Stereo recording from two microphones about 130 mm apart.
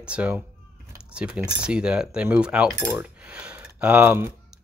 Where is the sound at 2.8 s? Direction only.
15° right (ahead or behind).